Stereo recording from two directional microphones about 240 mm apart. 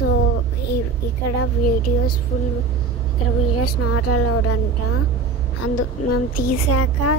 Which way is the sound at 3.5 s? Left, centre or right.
Left.